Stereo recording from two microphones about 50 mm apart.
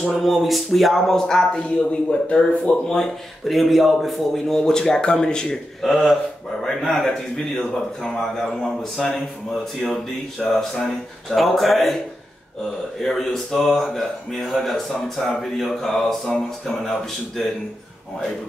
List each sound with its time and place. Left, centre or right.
0.0 s speech: centre
1.9 s speech: left
3.4 s speech: centre
4.6 s a man's voice: centre
5.8 s a man's voice: centre
13.0 s speech: centre